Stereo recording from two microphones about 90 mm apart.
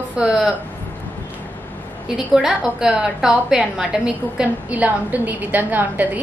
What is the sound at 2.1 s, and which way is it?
A woman's voice, 5° right (ahead or behind).